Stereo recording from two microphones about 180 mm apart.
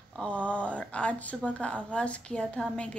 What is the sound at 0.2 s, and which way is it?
Speech, 5° left (ahead or behind).